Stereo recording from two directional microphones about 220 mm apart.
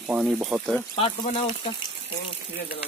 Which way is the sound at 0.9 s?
25° left (ahead or behind).